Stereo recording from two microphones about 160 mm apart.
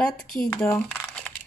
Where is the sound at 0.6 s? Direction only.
10° left (ahead or behind).